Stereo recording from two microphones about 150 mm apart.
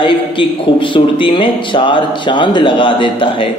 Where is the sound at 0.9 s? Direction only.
35° left (ahead or behind).